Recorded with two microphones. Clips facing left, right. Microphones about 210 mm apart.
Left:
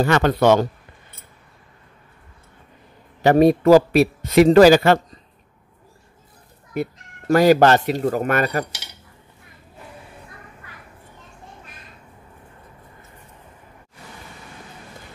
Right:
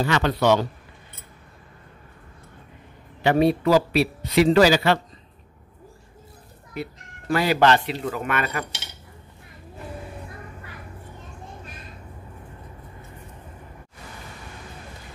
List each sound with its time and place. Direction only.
0.0 s a man's voice: 50° left (ahead or behind)
3.2 s a man's voice: 45° left (ahead or behind)
6.7 s speech: 45° left (ahead or behind)